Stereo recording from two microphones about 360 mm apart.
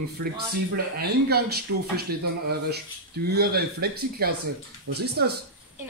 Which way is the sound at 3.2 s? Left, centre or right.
Right.